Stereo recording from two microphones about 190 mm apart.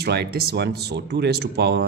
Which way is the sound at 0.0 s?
60° right (ahead or behind).